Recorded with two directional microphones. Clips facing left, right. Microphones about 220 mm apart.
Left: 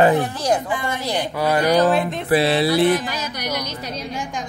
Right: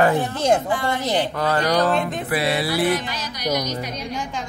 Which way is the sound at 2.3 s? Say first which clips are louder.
Left 7 dB; 25° left (ahead or behind).